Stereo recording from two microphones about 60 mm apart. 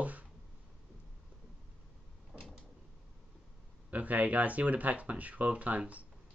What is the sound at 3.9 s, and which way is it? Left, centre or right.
Speech, right.